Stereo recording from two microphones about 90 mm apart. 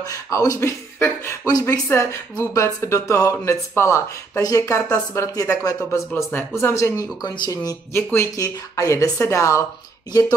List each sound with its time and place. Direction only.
0.0 s speech: 40° left (ahead or behind)
1.4 s speech: 40° left (ahead or behind)
5.9 s speech: 30° left (ahead or behind); by 7.7 s 50° left (ahead or behind)
7.9 s speech: 25° left (ahead or behind)
8.4 s speech: 35° left (ahead or behind)